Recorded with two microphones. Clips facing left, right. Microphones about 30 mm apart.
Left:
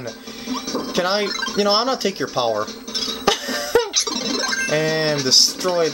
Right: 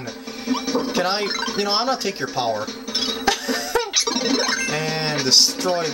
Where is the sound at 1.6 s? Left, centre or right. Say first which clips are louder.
Left 4 dB; centre.